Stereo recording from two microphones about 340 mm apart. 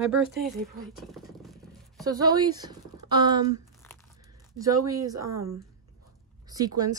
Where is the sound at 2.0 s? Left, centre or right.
Centre.